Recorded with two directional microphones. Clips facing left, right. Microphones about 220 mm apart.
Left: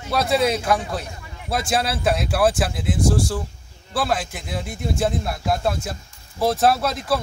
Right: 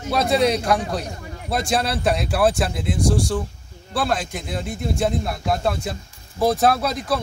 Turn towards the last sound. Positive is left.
turn(degrees=0)  # may be behind; listen again after turning